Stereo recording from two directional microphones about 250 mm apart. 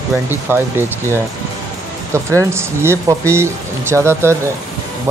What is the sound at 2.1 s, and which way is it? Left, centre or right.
Speech, centre.